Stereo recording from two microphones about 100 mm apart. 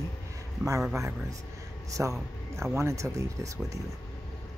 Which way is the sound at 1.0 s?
30° right (ahead or behind).